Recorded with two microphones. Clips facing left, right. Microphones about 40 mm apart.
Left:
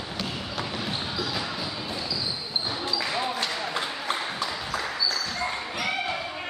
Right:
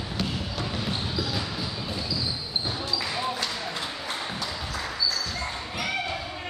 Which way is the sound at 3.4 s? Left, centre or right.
Centre.